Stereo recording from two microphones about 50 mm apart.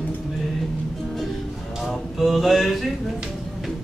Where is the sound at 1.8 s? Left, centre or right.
Centre.